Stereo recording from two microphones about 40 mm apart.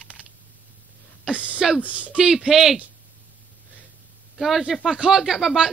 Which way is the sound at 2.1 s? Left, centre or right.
Centre.